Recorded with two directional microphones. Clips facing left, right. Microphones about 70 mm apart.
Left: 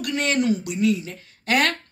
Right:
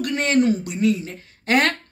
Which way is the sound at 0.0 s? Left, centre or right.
Right.